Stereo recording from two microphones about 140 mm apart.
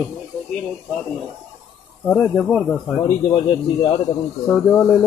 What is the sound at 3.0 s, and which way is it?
Speech, 25° left (ahead or behind).